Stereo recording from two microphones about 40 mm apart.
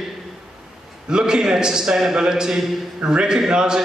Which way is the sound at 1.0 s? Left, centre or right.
Centre.